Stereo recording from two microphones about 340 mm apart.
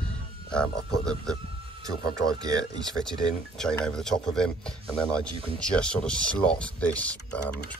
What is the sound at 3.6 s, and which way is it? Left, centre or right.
Speech, centre.